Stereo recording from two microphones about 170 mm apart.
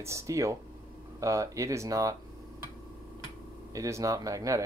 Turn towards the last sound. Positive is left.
turn(degrees=-20)  # may be behind; listen again after turning